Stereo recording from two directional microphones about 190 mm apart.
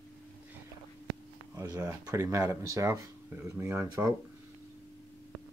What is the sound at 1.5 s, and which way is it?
Speech, 20° right (ahead or behind).